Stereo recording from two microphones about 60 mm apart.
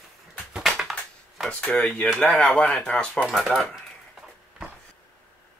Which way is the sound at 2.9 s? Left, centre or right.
Left.